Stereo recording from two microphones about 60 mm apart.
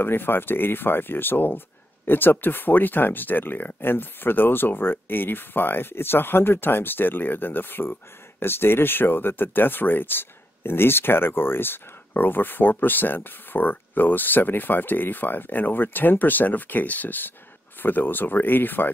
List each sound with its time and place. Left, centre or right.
0.0 s speech: left